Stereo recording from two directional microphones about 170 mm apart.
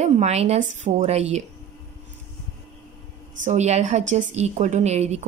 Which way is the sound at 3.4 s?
40° right (ahead or behind).